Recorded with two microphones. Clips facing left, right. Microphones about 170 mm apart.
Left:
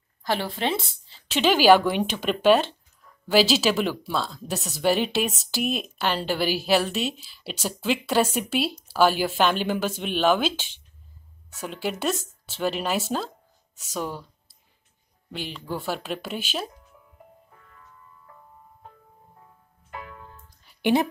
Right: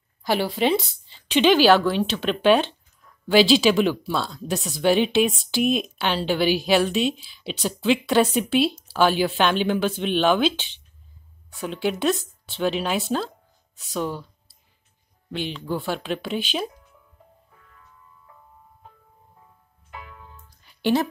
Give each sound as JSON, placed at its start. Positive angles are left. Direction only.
{"t": 0.2, "sound": "a woman's voice", "side_deg": -5}
{"t": 15.3, "sound": "a woman's voice", "side_deg": 5}
{"t": 20.2, "sound": "music", "side_deg": 0}
{"t": 20.8, "sound": "a woman's voice", "side_deg": 20}